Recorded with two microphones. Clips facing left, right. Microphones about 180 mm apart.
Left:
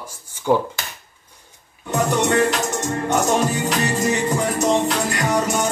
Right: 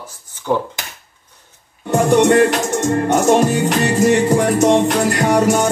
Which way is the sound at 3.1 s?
60° right (ahead or behind).